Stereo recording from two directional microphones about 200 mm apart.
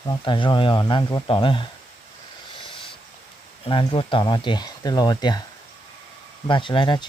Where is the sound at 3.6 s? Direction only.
25° left (ahead or behind).